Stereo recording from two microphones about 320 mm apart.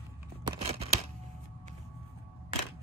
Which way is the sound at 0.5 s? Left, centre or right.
Centre.